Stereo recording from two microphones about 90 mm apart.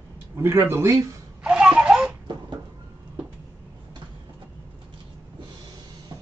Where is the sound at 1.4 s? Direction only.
10° right (ahead or behind).